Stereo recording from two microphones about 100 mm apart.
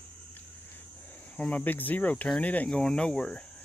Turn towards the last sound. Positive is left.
turn(degrees=10)  # may be behind; listen again after turning